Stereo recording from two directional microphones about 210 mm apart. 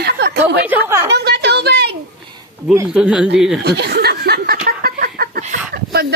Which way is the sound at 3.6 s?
50° right (ahead or behind).